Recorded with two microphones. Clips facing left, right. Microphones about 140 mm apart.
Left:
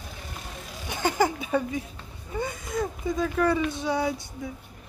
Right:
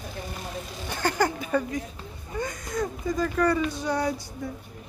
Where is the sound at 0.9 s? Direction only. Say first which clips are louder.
Left 1 dB; 15° left (ahead or behind).